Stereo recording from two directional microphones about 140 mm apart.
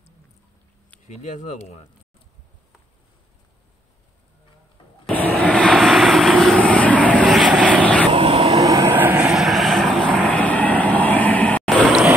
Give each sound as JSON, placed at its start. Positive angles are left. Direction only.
{"t": 1.0, "sound": "speech", "side_deg": 60}
{"t": 5.1, "sound": "vehicle", "side_deg": 10}
{"t": 7.8, "sound": "vehicle", "side_deg": 10}
{"t": 8.1, "sound": "vehicle", "side_deg": -40}
{"t": 8.6, "sound": "vehicle", "side_deg": -25}
{"t": 8.9, "sound": "vehicle", "side_deg": -10}